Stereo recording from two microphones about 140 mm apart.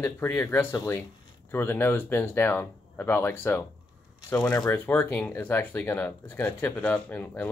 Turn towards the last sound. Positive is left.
turn(degrees=10)  # may be behind; listen again after turning